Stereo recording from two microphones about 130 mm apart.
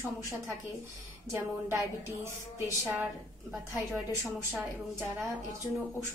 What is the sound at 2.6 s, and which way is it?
Speech, 15° right (ahead or behind).